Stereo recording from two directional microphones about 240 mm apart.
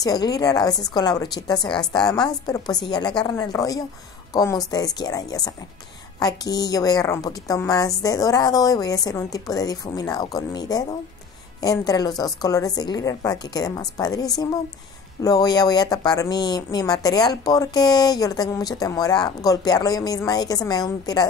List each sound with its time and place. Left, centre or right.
0.0 s a woman's voice: centre